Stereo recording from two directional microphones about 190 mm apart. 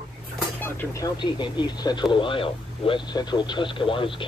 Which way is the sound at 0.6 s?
15° left (ahead or behind).